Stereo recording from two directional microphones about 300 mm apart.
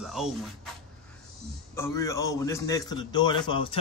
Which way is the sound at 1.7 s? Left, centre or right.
Centre.